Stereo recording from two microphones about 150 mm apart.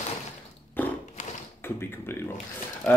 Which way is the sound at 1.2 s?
50° left (ahead or behind).